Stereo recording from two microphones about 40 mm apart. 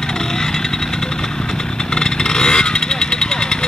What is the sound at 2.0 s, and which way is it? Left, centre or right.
Vehicle, centre.